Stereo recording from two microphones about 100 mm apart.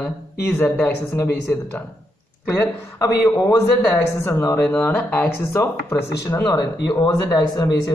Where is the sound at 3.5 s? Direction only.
30° left (ahead or behind).